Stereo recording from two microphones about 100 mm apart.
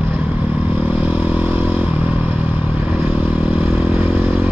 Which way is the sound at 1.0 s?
5° right (ahead or behind).